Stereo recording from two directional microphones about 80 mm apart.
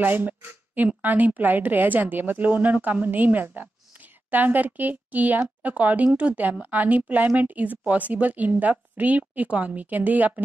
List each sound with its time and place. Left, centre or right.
0.0 s speech: right